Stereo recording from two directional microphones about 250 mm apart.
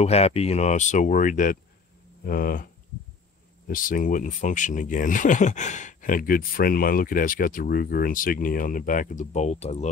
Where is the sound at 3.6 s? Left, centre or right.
Left.